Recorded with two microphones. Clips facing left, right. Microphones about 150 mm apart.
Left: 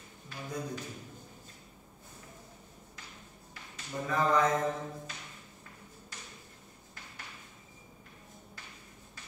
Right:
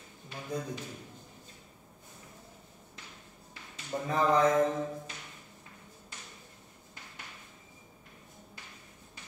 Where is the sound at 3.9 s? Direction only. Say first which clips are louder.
Right 2 dB; 40° right (ahead or behind).